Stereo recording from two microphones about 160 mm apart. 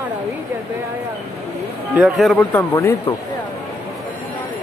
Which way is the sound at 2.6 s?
15° left (ahead or behind).